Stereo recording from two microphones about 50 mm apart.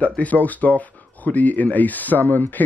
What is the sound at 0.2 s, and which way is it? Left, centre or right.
Speech, left.